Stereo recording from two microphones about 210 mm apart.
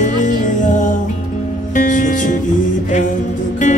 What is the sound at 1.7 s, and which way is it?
Music, 40° left (ahead or behind).